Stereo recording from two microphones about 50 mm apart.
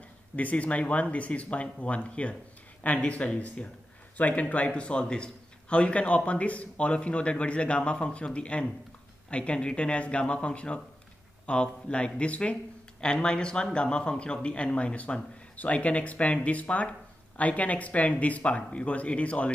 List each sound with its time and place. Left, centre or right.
0.4 s a man's voice: left